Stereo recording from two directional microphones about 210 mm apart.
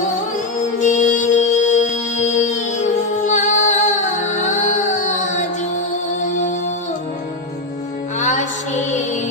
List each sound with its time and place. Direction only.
0.7 s music: 35° left (ahead or behind)
8.2 s music: 35° left (ahead or behind)